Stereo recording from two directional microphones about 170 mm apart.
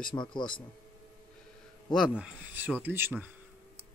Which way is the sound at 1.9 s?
5° right (ahead or behind).